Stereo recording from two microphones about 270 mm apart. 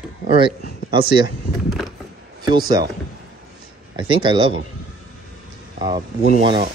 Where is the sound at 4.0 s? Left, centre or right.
Centre.